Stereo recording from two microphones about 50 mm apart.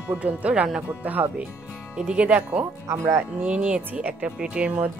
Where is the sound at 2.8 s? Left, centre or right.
Right.